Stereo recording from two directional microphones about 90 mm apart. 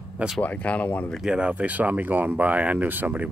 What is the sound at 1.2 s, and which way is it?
Speech, 10° right (ahead or behind).